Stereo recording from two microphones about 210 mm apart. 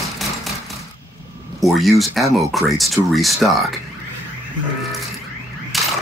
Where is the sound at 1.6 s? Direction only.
Centre (ahead or behind).